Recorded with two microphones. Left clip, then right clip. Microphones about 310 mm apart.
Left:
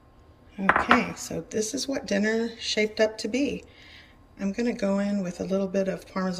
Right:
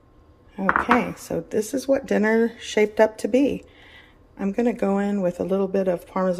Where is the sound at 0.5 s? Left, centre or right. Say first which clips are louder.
Right 1 dB; centre.